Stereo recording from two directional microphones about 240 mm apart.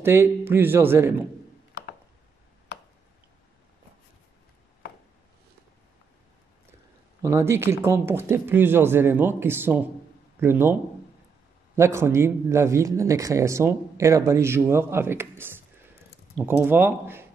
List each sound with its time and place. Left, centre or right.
0.0 s speech: centre
2.7 s tick: left
7.2 s speech: centre